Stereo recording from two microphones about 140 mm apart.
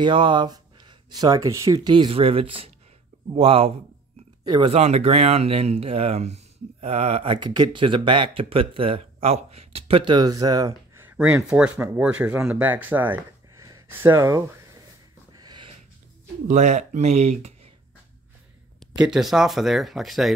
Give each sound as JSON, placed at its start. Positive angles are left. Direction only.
{"t": 0.0, "sound": "speech", "side_deg": -35}
{"t": 1.9, "sound": "speech", "side_deg": -35}
{"t": 4.7, "sound": "speech", "side_deg": -50}
{"t": 11.1, "sound": "speech", "side_deg": -15}
{"t": 13.6, "sound": "a sound", "side_deg": -25}
{"t": 15.3, "sound": "a sound", "side_deg": -30}
{"t": 16.4, "sound": "speech", "side_deg": -60}
{"t": 18.9, "sound": "speech", "side_deg": -5}